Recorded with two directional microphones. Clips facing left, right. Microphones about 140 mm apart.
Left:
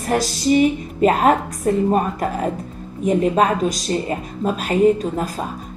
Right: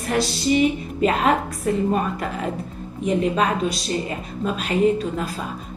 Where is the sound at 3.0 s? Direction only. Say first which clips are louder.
Left 4 dB; 45° left (ahead or behind).